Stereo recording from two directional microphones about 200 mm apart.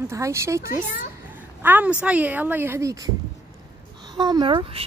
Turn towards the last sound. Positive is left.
turn(degrees=-25)  # may be behind; listen again after turning